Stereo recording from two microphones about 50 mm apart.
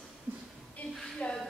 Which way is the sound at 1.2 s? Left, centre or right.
Left.